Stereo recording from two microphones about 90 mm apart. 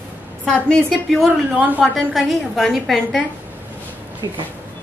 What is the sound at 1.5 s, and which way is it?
Speech, 20° right (ahead or behind).